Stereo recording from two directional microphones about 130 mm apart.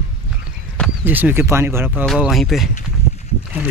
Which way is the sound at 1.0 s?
15° right (ahead or behind).